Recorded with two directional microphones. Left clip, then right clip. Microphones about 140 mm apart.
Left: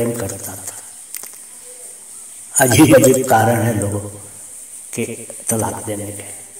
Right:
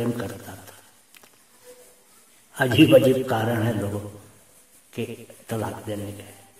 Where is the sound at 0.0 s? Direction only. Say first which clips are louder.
Left 7 dB; 20° left (ahead or behind).